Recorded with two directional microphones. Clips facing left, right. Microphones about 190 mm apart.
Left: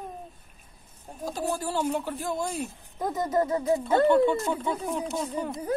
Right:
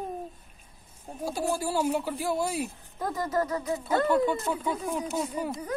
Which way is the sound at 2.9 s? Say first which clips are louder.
Left 3 dB; 20° left (ahead or behind).